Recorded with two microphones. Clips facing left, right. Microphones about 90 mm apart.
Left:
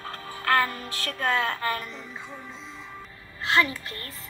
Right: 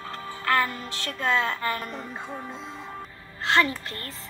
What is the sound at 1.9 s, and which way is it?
Speech, 50° right (ahead or behind).